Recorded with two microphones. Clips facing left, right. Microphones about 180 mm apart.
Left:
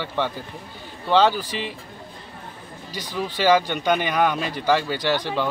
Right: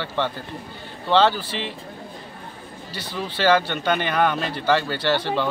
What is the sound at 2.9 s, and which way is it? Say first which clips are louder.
Speech: left 2 dB; 10° left (ahead or behind).